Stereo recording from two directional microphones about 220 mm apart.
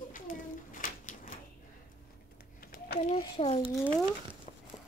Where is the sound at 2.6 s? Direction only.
40° left (ahead or behind).